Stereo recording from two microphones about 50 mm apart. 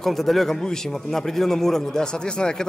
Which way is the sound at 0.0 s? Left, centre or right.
Centre.